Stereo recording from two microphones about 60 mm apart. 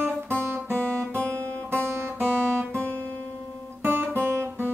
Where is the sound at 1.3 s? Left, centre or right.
Right.